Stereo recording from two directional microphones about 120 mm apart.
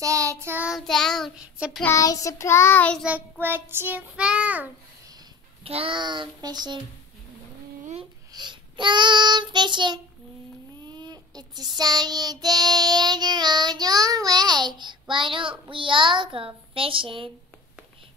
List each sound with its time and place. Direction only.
0.0 s child singing: 25° right (ahead or behind)
0.6 s child singing: 5° right (ahead or behind)
1.4 s child singing: 10° right (ahead or behind)
1.9 s child singing: 30° left (ahead or behind)
3.0 s child singing: 10° right (ahead or behind)
5.6 s a child's voice: 55° right (ahead or behind)
5.9 s child singing: 40° right (ahead or behind)
8.3 s child singing: 40° right (ahead or behind)
15.7 s a child's voice: 45° right (ahead or behind)